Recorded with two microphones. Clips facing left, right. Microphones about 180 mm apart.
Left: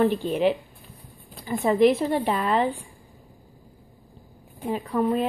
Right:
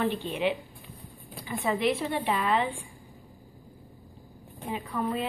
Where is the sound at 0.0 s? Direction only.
40° left (ahead or behind).